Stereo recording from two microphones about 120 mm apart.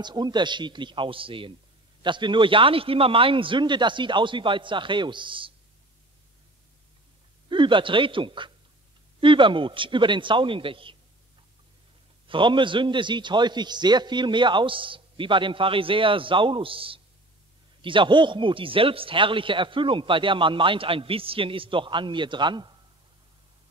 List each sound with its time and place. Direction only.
0.0 s a man's voice: 40° right (ahead or behind)
7.4 s a man's voice: 40° right (ahead or behind)
12.3 s a man's voice: 45° right (ahead or behind)